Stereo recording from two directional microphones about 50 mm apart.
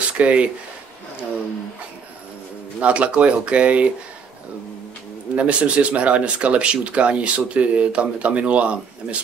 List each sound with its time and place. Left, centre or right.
0.2 s speech: right
2.8 s speech: right
5.3 s speech: right